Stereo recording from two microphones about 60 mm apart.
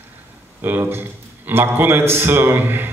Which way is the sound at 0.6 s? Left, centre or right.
Right.